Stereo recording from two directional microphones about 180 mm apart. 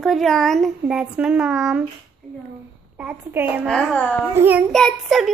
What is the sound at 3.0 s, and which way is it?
Speech, 10° right (ahead or behind).